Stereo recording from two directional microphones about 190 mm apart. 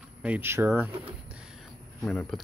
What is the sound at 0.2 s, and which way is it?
Speech, 10° right (ahead or behind).